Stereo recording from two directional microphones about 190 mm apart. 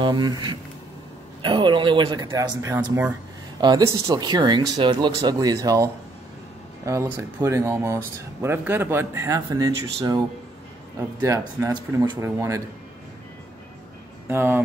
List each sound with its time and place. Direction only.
0.0 s speech: 20° right (ahead or behind)
14.3 s speech: 10° right (ahead or behind)